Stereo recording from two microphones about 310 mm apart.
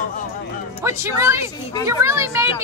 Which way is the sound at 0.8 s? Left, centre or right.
Centre.